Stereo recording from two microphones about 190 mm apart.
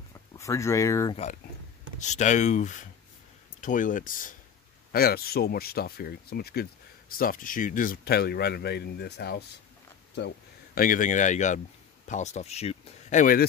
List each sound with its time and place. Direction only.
0.4 s speech: 15° left (ahead or behind)
2.0 s speech: 40° left (ahead or behind)